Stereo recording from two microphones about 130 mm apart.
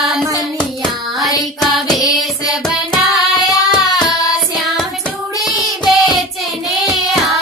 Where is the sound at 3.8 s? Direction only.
30° left (ahead or behind).